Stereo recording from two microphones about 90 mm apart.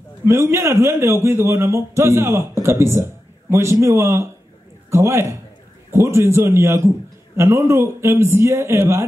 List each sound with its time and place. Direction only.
0.2 s a man's voice: 30° right (ahead or behind)